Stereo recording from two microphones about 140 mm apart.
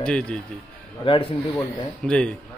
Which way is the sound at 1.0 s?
35° left (ahead or behind).